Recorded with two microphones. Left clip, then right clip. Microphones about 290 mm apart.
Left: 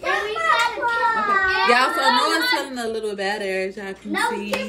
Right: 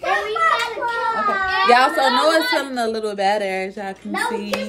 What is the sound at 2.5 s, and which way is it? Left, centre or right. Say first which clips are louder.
A woman's voice: right 4 dB; right.